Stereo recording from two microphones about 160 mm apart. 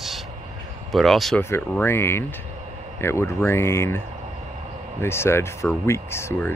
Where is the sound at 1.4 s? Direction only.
15° left (ahead or behind).